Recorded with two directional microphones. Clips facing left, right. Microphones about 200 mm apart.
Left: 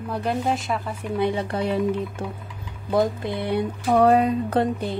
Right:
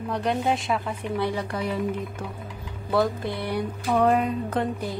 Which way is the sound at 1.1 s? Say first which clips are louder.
Left 4 dB; 20° left (ahead or behind).